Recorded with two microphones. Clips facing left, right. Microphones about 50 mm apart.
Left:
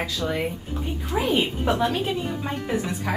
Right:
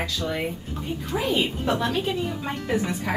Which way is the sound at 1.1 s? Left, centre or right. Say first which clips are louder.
Left 2 dB; left.